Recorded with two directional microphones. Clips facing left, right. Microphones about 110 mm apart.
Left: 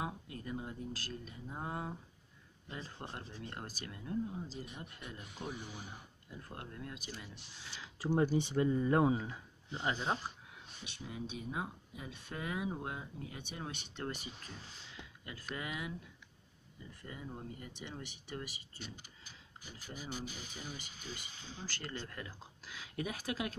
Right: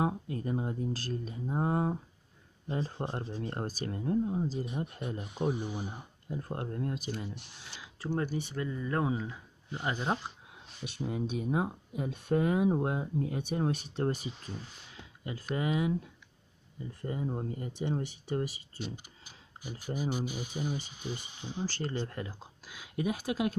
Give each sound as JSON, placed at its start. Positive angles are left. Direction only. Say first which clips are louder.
{"t": 0.0, "sound": "speech", "louder": "right 10 dB", "side_deg": -35}
{"t": 4.6, "sound": "speech", "louder": "right 11 dB", "side_deg": -25}
{"t": 7.3, "sound": "speech", "louder": "right 5 dB", "side_deg": -65}
{"t": 8.0, "sound": "speech", "louder": "left 1 dB", "side_deg": 10}
{"t": 8.3, "sound": "speech", "louder": "left 4 dB", "side_deg": 20}
{"t": 9.0, "sound": "speech", "louder": "left 1 dB", "side_deg": 0}
{"t": 10.9, "sound": "speech", "louder": "right 10 dB", "side_deg": -50}
{"t": 15.5, "sound": "speech", "louder": "right 12 dB", "side_deg": -30}
{"t": 17.0, "sound": "speech", "louder": "right 11 dB", "side_deg": -40}
{"t": 20.0, "sound": "speech", "louder": "right 10 dB", "side_deg": -15}
{"t": 21.6, "sound": "speech", "louder": "right 9 dB", "side_deg": -35}
{"t": 22.7, "sound": "speech", "louder": "right 8 dB", "side_deg": -15}